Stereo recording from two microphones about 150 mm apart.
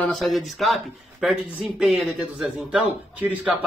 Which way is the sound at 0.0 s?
Centre (ahead or behind).